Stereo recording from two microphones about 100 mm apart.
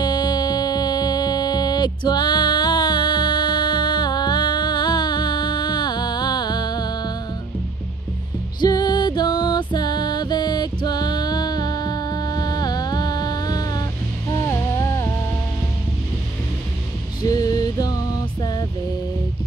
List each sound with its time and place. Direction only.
0.0 s music: 45° left (ahead or behind)
8.5 s music: 45° left (ahead or behind)
14.3 s hum: 30° left (ahead or behind)
17.2 s male singing: 40° left (ahead or behind)